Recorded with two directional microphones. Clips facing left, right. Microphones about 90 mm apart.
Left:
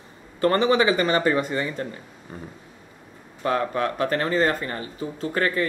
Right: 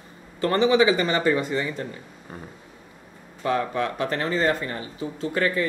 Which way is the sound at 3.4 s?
45° left (ahead or behind).